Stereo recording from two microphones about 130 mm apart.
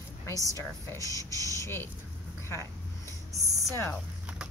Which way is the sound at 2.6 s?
25° right (ahead or behind).